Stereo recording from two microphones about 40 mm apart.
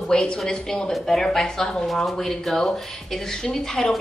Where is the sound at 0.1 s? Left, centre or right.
Centre.